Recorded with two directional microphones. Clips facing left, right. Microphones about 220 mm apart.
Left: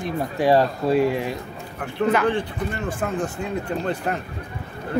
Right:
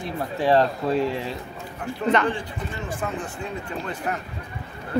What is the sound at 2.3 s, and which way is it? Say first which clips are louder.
Speech: left 5 dB; 60° left (ahead or behind).